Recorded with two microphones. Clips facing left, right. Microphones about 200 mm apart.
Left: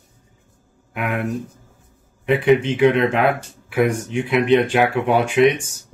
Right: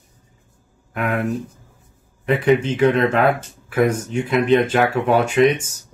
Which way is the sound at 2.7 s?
15° left (ahead or behind).